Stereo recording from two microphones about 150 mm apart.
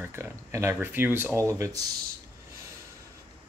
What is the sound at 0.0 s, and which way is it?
Speech, 15° right (ahead or behind).